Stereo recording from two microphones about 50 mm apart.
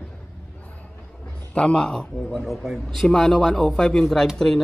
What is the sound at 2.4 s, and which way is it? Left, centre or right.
Speech, centre.